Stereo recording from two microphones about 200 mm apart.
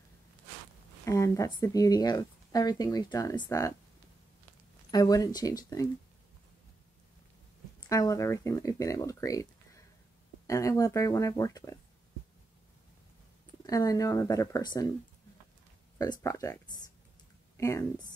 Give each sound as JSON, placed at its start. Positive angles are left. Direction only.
{"t": 1.0, "sound": "speech", "side_deg": 15}
{"t": 4.9, "sound": "speech", "side_deg": 20}
{"t": 7.9, "sound": "speech", "side_deg": 15}
{"t": 13.7, "sound": "speech", "side_deg": 20}
{"t": 16.0, "sound": "speech", "side_deg": 20}